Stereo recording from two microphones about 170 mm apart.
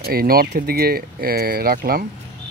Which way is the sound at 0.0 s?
65° right (ahead or behind).